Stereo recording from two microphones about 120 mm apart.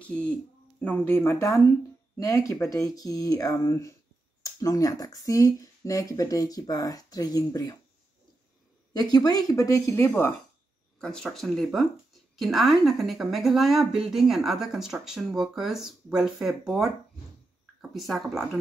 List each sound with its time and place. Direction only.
0.0 s speech: 10° left (ahead or behind); by 7.7 s 30° left (ahead or behind)
8.9 s speech: 35° left (ahead or behind)
11.0 s a woman's voice: 5° left (ahead or behind)
17.9 s a woman's voice: centre (ahead or behind)